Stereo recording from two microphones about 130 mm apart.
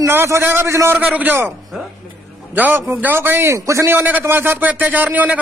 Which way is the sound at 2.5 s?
15° right (ahead or behind).